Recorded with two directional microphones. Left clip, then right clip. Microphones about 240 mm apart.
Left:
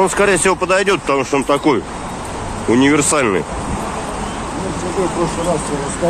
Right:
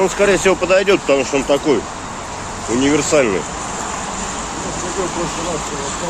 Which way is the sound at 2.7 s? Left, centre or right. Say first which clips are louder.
Even; left.